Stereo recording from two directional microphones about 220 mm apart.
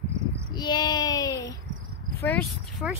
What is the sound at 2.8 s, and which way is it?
Speech, centre (ahead or behind).